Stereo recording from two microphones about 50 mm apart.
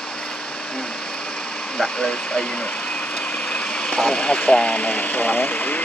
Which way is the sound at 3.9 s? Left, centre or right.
Centre.